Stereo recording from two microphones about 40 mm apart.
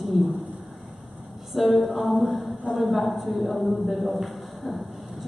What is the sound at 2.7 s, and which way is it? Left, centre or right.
A woman's voice, centre.